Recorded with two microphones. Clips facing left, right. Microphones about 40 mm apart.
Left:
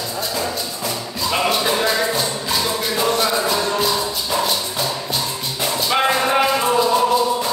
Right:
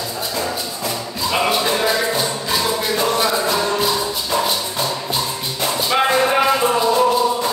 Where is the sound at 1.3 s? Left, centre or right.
Centre.